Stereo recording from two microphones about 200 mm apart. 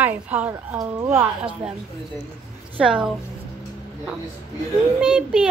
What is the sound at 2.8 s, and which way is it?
Speech, 5° right (ahead or behind).